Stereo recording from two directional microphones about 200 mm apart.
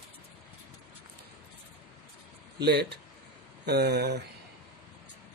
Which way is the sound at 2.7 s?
55° right (ahead or behind).